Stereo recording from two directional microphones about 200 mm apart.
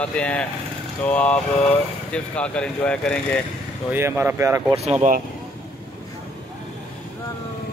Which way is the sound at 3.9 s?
10° right (ahead or behind).